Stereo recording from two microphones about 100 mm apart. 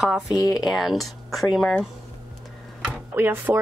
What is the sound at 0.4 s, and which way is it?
Speech, 40° left (ahead or behind).